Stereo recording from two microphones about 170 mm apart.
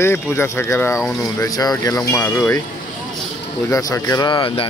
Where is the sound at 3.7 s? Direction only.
20° left (ahead or behind).